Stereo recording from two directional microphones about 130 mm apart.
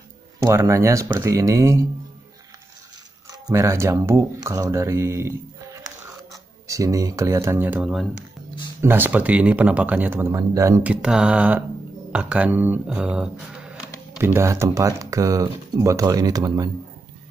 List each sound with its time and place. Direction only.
0.4 s speech: 25° right (ahead or behind)
3.3 s speech: 25° right (ahead or behind)
10.3 s speech: 25° right (ahead or behind)
10.8 s speech: 10° right (ahead or behind)
14.1 s speech: 20° right (ahead or behind)